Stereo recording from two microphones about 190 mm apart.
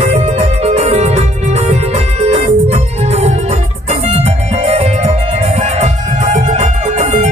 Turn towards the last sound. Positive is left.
turn(degrees=-40)  # may be behind; listen again after turning